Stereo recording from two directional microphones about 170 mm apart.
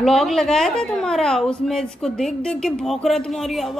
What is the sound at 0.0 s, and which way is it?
A woman's voice, centre (ahead or behind).